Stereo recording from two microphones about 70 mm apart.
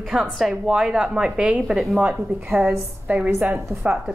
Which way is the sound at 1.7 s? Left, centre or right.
Centre.